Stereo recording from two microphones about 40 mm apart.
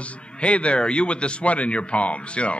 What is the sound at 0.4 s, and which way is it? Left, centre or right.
A man's voice, left.